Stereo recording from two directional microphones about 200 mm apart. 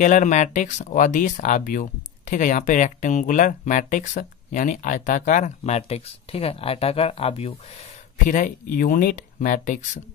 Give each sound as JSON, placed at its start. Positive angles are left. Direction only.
{"t": 0.0, "sound": "speech", "side_deg": 35}
{"t": 8.3, "sound": "speech", "side_deg": 45}